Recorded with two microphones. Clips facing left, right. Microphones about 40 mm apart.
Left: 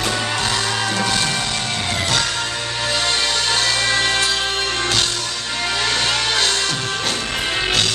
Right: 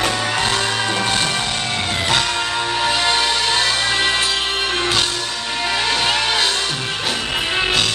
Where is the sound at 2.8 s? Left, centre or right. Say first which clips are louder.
Right 2 dB; right.